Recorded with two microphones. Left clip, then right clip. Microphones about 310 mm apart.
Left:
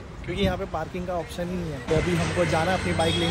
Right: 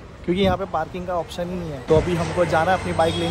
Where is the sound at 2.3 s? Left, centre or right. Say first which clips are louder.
Right 6 dB; centre.